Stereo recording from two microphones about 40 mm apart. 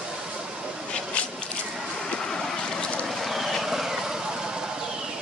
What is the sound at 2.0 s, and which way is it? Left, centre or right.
Vehicle, centre.